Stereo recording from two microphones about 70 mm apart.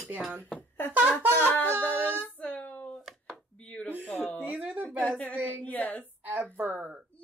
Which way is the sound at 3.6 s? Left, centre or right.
Left.